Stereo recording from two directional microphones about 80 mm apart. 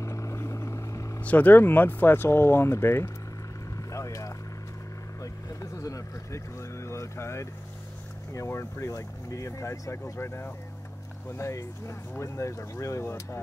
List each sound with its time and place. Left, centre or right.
0.0 s vehicle: left
1.2 s speech: left
3.7 s vehicle: left
5.2 s a sound: left
8.3 s speech: left